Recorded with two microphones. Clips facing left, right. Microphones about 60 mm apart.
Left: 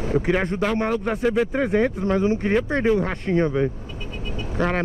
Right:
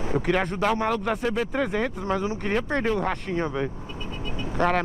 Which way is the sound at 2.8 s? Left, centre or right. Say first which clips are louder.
Left 5 dB; centre.